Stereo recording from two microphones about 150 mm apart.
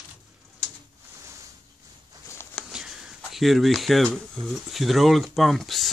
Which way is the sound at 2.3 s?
15° left (ahead or behind).